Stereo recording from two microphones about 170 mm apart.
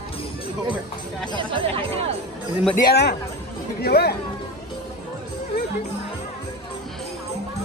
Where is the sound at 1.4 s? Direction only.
30° right (ahead or behind).